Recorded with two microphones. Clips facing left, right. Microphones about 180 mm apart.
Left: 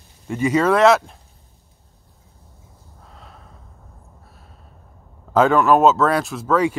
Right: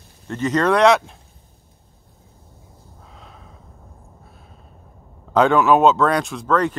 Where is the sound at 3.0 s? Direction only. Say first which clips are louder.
Even; centre (ahead or behind).